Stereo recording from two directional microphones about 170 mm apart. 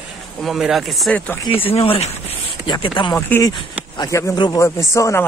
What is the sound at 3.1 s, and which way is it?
Speech, 15° left (ahead or behind).